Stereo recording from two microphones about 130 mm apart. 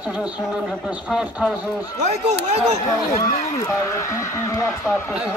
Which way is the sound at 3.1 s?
85° left.